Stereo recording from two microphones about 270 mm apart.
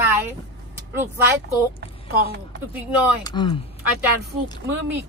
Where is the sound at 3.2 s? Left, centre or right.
Centre.